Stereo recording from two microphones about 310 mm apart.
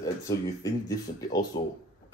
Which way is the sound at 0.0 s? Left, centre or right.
Centre.